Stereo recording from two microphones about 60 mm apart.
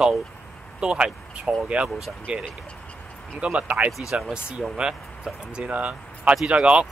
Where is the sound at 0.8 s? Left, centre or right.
Centre.